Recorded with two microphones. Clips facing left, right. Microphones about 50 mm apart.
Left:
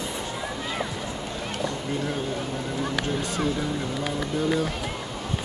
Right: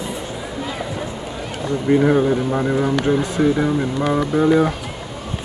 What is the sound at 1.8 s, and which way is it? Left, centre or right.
Speech, right.